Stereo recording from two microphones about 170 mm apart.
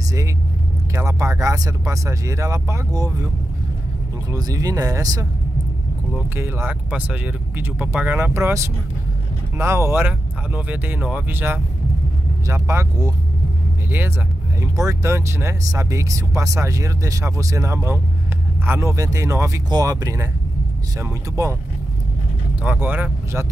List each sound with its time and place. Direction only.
0.9 s speech: 15° right (ahead or behind)
4.3 s speech: 20° right (ahead or behind)
6.3 s speech: 10° right (ahead or behind)
22.6 s speech: 10° right (ahead or behind)